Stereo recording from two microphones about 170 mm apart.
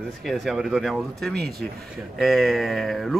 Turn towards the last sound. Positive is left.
turn(degrees=0)  # may be behind; listen again after turning